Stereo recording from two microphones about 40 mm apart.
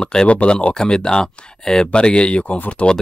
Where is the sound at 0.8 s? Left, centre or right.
Left.